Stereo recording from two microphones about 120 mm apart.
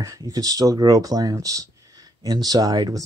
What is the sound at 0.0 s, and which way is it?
Speech, 30° right (ahead or behind).